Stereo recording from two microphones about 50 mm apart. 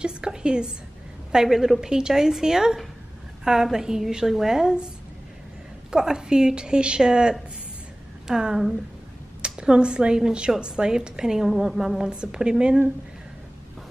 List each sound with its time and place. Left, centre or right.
0.0 s a sound: centre
1.3 s a woman's voice: centre
5.9 s a woman's voice: centre
12.1 s a woman's voice: centre